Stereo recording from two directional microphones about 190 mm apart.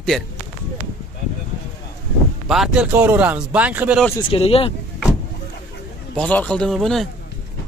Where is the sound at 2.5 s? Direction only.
5° right (ahead or behind).